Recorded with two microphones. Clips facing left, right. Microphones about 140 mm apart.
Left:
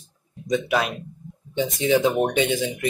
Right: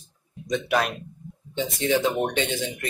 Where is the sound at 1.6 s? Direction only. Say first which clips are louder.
Left 3 dB; 15° left (ahead or behind).